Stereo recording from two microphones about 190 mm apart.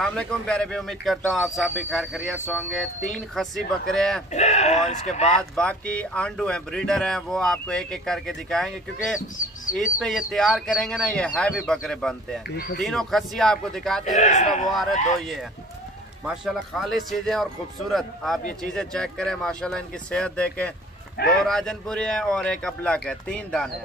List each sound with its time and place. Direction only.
0.0 s speech: 5° left (ahead or behind)
4.3 s speech: 35° left (ahead or behind)
5.6 s speech: 5° left (ahead or behind)
9.9 s speech: centre (ahead or behind)
12.4 s speech: 50° left (ahead or behind)
12.8 s speech: centre (ahead or behind)
14.0 s speech: 40° left (ahead or behind)
14.7 s speech: centre (ahead or behind)
16.3 s speech: centre (ahead or behind)